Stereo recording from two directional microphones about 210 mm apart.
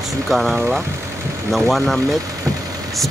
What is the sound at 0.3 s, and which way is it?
Speech, centre (ahead or behind).